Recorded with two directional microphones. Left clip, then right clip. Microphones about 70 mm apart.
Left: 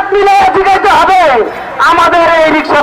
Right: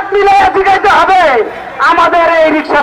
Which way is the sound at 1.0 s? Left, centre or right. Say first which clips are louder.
Left 1 dB; left.